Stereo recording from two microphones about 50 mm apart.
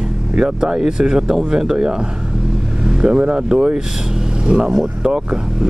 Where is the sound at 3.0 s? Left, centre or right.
Centre.